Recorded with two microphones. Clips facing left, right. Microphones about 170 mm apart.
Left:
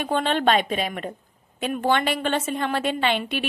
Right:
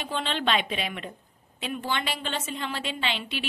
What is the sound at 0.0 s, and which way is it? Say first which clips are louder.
A woman's voice: left 7 dB; 50° left (ahead or behind).